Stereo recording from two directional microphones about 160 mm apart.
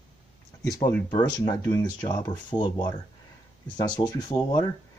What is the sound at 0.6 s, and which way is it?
Speech, 20° left (ahead or behind).